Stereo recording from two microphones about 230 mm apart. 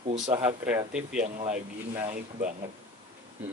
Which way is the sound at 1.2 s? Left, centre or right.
Right.